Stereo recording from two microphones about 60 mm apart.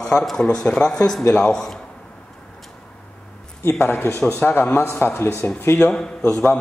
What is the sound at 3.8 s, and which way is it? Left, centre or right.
A man's voice, left.